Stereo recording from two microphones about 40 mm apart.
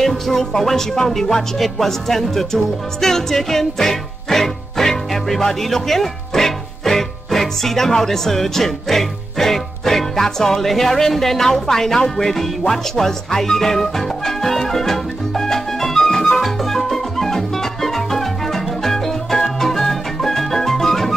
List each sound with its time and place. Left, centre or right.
0.0 s music: centre